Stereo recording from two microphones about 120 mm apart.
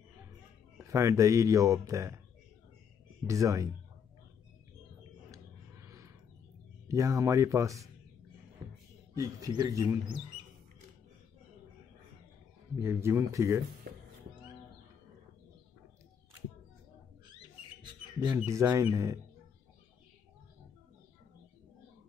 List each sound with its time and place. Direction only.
0.7 s speech: 25° right (ahead or behind)
3.3 s speech: 25° right (ahead or behind)
5.9 s a sound: 25° right (ahead or behind)
6.9 s speech: 30° right (ahead or behind)
9.1 s speech: 30° right (ahead or behind)
12.7 s speech: 20° right (ahead or behind)
18.3 s speech: 25° right (ahead or behind)